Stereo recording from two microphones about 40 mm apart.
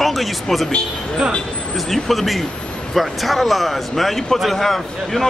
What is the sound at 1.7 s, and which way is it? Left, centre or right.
Speech, centre.